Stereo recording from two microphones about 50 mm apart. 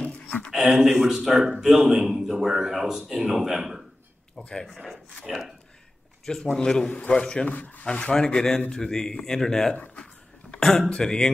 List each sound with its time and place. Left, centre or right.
0.0 s a sound: left
0.7 s a man's voice: centre
4.4 s speech: centre
4.6 s a man's voice: centre
6.2 s a man's voice: centre
7.5 s speech: left
7.9 s speech: centre